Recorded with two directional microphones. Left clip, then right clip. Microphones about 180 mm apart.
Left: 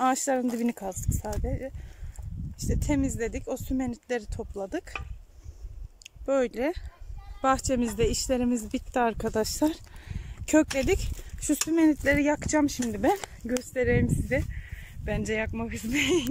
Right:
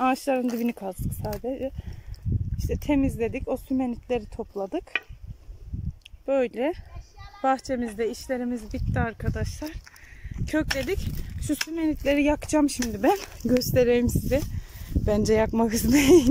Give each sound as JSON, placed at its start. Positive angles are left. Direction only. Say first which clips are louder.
{"t": 0.0, "sound": "speech", "louder": "right 1 dB", "side_deg": -5}
{"t": 6.2, "sound": "speech", "louder": "right 2 dB", "side_deg": 0}
{"t": 15.0, "sound": "speech", "louder": "right 8 dB", "side_deg": -25}